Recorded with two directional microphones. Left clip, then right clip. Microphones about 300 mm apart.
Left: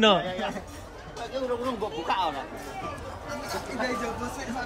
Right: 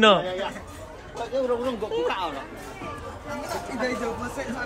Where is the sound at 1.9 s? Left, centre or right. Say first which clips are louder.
Right 2 dB; centre.